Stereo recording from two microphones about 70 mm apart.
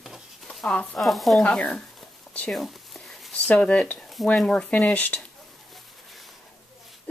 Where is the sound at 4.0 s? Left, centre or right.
Centre.